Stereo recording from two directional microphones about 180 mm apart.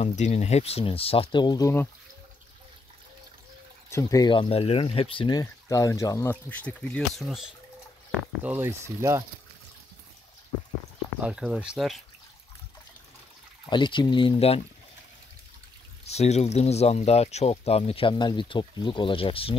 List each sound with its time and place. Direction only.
0.0 s speech: 40° left (ahead or behind); by 1.9 s 15° left (ahead or behind)
3.9 s speech: 20° left (ahead or behind)
5.4 s speech: 20° left (ahead or behind); by 9.2 s 15° right (ahead or behind)
11.2 s speech: 5° right (ahead or behind)
13.7 s speech: 25° left (ahead or behind)
16.1 s speech: 35° left (ahead or behind)